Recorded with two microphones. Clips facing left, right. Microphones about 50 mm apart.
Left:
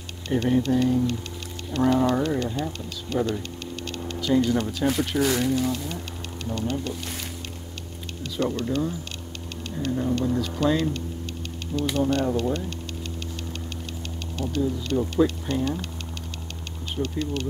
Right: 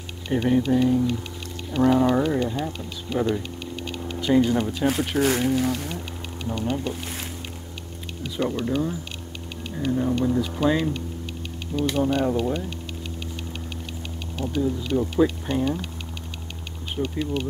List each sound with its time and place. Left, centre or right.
0.3 s speech: centre
4.3 s speech: right
4.6 s speech: centre
5.1 s speech: right
5.9 s a sound: centre
8.2 s speech: centre
14.5 s speech: centre
16.9 s speech: centre